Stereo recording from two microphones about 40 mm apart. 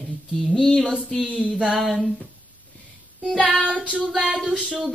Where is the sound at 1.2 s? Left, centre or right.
Right.